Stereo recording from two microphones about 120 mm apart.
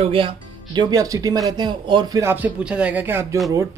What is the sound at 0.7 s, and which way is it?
Speech, 30° right (ahead or behind).